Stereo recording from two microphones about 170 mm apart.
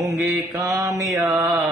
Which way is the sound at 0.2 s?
20° right (ahead or behind).